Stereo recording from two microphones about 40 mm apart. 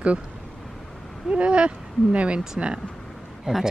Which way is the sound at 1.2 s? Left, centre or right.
Right.